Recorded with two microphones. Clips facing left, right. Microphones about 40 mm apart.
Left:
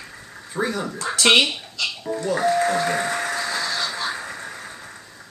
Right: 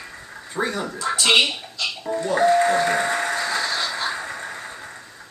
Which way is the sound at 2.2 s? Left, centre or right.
Centre.